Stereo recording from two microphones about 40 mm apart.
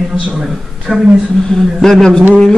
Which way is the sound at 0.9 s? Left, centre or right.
Right.